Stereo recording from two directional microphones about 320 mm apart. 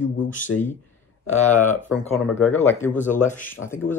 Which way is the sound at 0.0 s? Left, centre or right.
Left.